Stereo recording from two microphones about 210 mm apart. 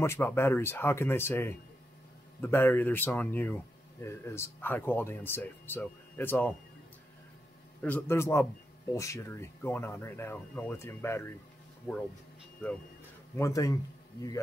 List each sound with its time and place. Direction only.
0.0 s speech: 10° left (ahead or behind)
7.8 s speech: 10° left (ahead or behind)
11.9 s speech: centre (ahead or behind)
13.4 s speech: 15° left (ahead or behind)